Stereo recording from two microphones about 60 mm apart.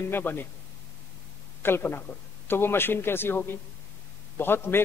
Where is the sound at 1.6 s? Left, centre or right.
Left.